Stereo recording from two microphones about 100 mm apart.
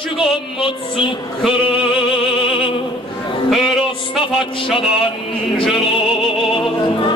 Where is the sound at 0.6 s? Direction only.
55° left (ahead or behind).